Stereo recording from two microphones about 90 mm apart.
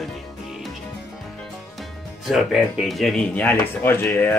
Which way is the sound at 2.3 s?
Centre (ahead or behind).